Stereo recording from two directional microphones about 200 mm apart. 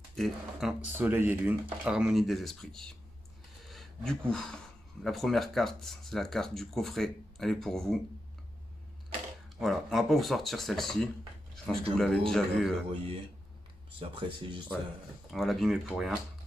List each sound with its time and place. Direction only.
0.1 s speech: centre (ahead or behind)
3.6 s a sound: centre (ahead or behind)
5.0 s speech: centre (ahead or behind)
9.6 s speech: centre (ahead or behind)
13.9 s speech: 25° right (ahead or behind)
15.3 s speech: centre (ahead or behind)